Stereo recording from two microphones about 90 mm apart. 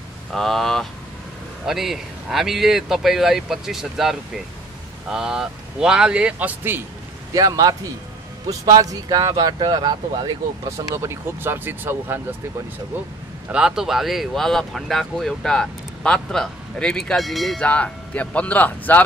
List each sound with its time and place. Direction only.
0.3 s a man's voice: 5° left (ahead or behind); by 6.8 s 20° right (ahead or behind)
7.3 s speech: 45° right (ahead or behind)
10.8 s speech: 40° right (ahead or behind)
11.4 s speech: 25° right (ahead or behind)
13.5 s speech: 10° right (ahead or behind)
17.6 s speech: 15° left (ahead or behind)